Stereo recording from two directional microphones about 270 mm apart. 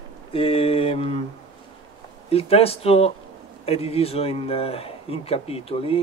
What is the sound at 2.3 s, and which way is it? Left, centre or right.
Speech, left.